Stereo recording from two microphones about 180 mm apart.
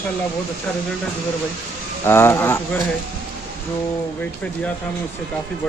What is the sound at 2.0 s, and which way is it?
Speech, 15° left (ahead or behind).